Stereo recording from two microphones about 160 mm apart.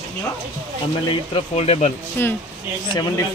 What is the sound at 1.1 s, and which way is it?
Speech, 40° left (ahead or behind).